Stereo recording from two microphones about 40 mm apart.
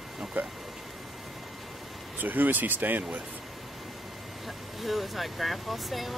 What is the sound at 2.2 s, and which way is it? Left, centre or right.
Speech, right.